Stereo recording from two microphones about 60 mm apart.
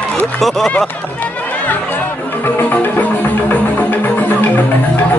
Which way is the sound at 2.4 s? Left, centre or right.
Left.